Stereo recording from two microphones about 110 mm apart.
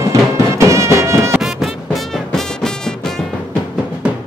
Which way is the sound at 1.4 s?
Centre (ahead or behind).